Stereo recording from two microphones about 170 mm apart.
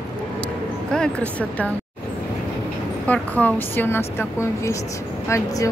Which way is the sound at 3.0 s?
10° left (ahead or behind).